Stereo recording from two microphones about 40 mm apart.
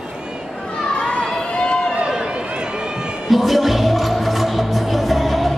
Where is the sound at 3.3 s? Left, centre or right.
Centre.